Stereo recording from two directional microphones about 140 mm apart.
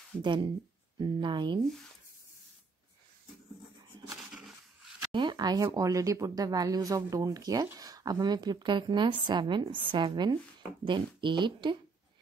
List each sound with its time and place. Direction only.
0.2 s speech: 35° right (ahead or behind)
4.2 s roaring cats: 5° right (ahead or behind)
5.1 s speech: 35° right (ahead or behind)